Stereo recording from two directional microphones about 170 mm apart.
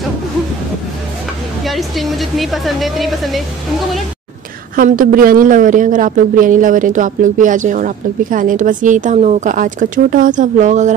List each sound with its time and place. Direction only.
1.6 s speech: centre (ahead or behind)
4.7 s speech: 55° right (ahead or behind)